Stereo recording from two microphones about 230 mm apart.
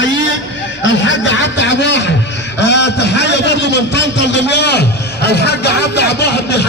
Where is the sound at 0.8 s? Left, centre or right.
Left.